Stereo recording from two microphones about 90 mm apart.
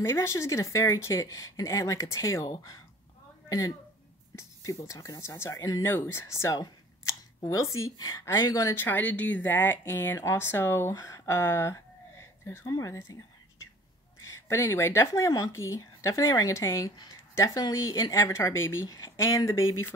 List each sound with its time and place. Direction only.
0.0 s a woman's voice: 30° left (ahead or behind)
8.7 s speech: 20° left (ahead or behind)
11.0 s a sound: 35° left (ahead or behind)
12.6 s a woman's voice: 40° left (ahead or behind)
14.2 s a woman's voice: 35° left (ahead or behind)
18.9 s a woman's voice: 45° left (ahead or behind)